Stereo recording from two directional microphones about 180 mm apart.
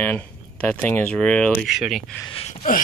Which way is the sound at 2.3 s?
30° left (ahead or behind).